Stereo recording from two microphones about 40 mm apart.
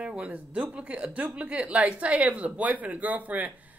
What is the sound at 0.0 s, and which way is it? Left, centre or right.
Speech, right.